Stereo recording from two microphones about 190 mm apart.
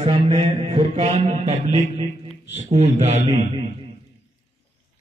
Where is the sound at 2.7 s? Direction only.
35° right (ahead or behind).